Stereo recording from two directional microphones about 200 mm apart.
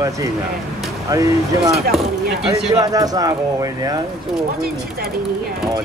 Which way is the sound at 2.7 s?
20° right (ahead or behind).